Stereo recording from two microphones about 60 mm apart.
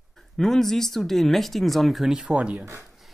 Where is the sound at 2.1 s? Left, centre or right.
Centre.